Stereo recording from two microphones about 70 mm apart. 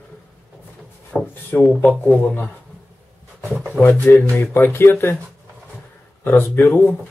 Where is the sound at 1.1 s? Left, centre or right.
Centre.